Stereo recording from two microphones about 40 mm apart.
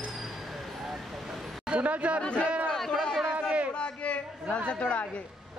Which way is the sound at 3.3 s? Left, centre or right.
Right.